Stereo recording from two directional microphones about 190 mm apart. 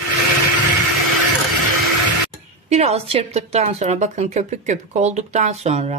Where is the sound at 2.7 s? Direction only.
35° right (ahead or behind).